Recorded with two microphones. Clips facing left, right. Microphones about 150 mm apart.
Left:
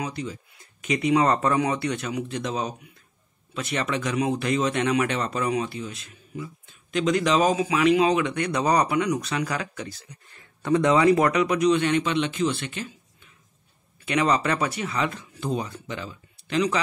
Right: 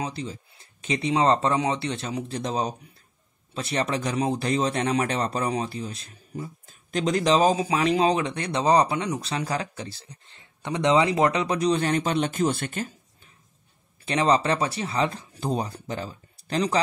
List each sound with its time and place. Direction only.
0.0 s speech: 30° right (ahead or behind)
14.0 s speech: 30° right (ahead or behind)